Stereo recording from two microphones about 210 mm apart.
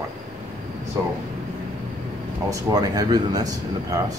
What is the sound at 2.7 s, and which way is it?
Speech, 20° right (ahead or behind).